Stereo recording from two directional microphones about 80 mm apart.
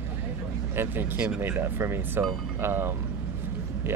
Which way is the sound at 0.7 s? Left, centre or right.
Right.